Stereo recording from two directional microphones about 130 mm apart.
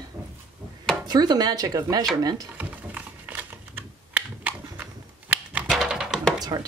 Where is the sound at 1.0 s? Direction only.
30° right (ahead or behind).